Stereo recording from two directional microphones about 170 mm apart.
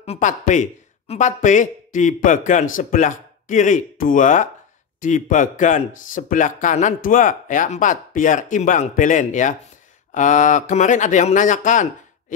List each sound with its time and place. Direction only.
0.0 s speech: 40° left (ahead or behind)